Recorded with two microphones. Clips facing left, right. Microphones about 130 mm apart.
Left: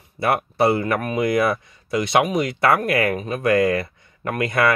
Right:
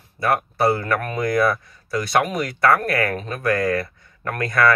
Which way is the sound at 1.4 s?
20° left (ahead or behind).